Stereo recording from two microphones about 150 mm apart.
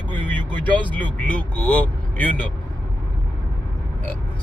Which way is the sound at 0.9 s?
10° left (ahead or behind).